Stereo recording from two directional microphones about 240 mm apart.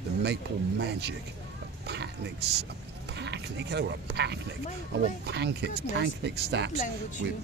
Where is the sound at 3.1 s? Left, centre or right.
Right.